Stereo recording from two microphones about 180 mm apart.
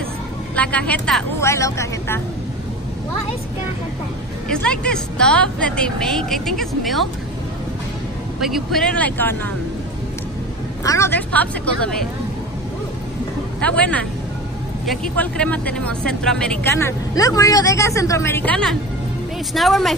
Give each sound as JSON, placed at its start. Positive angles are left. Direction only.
{"t": 0.6, "sound": "a woman's voice", "side_deg": 5}
{"t": 4.5, "sound": "a woman's voice", "side_deg": 5}
{"t": 8.4, "sound": "a woman's voice", "side_deg": 0}
{"t": 10.8, "sound": "a woman's voice", "side_deg": 15}
{"t": 13.6, "sound": "a woman's voice", "side_deg": 5}